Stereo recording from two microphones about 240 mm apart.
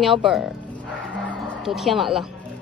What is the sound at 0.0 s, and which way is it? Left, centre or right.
Speech, centre.